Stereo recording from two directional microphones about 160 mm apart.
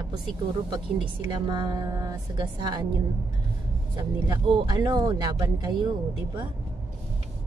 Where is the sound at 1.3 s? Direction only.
25° right (ahead or behind).